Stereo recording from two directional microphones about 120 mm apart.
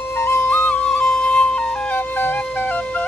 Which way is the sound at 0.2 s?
20° left (ahead or behind).